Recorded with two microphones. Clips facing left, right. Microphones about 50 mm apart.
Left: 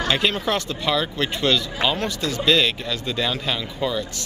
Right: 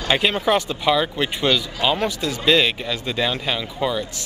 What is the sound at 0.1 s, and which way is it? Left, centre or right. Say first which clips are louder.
Speech: right 5 dB; centre.